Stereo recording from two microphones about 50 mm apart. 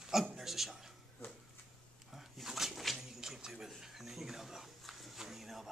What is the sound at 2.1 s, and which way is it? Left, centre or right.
Bird, centre.